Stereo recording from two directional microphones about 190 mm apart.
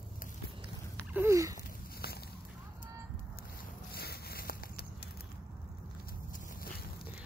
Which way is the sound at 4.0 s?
55° left (ahead or behind).